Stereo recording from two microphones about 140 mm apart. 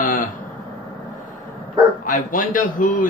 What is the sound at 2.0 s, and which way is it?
Speech, 75° left (ahead or behind).